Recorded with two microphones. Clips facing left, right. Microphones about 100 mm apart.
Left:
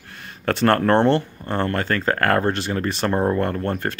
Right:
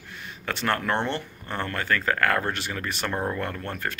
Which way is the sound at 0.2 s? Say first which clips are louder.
Left 10 dB; 40° left (ahead or behind).